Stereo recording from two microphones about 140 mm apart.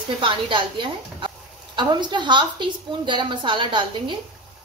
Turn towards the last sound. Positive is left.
turn(degrees=-35)  # may be behind; listen again after turning